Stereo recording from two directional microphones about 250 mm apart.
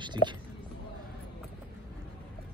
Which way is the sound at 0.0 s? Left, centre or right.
Centre.